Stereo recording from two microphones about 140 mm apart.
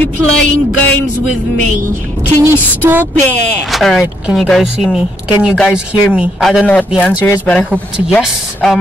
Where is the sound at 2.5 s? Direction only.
15° right (ahead or behind).